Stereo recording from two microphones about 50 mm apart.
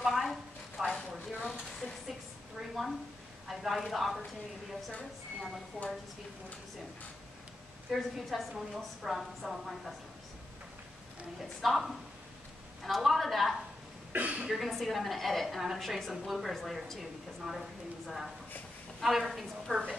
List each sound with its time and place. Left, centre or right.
0.0 s a sound: centre
0.9 s a sound: centre
2.8 s a sound: centre
3.4 s speech: centre
5.8 s speech: centre
7.9 s a woman's voice: centre
11.6 s a woman's voice: centre
14.1 s a woman's voice: right
14.5 s a woman's voice: centre